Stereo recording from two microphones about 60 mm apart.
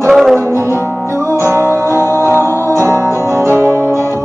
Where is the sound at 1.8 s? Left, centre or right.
Left.